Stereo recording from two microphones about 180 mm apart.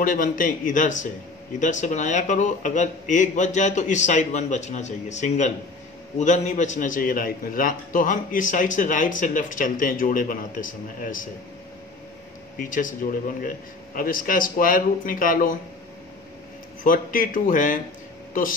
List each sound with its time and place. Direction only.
0.0 s a man's voice: 50° left (ahead or behind)
12.5 s a man's voice: 50° left (ahead or behind)
16.8 s a man's voice: 50° left (ahead or behind)